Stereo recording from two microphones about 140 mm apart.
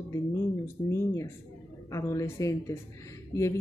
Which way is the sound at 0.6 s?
20° left (ahead or behind).